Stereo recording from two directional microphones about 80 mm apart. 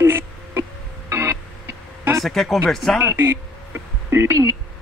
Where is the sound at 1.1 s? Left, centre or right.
Right.